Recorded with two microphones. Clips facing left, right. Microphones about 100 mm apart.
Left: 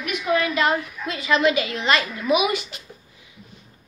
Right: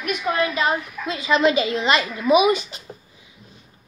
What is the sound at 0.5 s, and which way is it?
A woman's voice, 20° right (ahead or behind).